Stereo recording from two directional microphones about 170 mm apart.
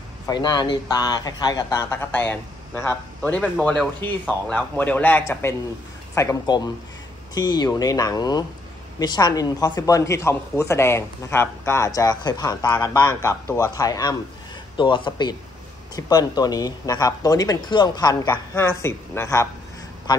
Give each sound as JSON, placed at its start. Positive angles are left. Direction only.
{"t": 0.3, "sound": "speech", "side_deg": 25}